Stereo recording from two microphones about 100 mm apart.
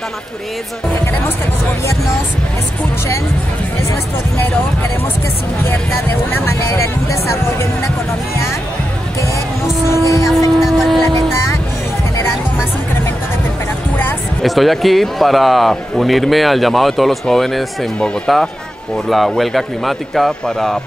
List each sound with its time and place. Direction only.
5.7 s speech: 20° left (ahead or behind)
6.7 s speech: 30° left (ahead or behind)
10.0 s speech: 35° left (ahead or behind)
10.6 s vehicle: centre (ahead or behind)
14.4 s speech: centre (ahead or behind)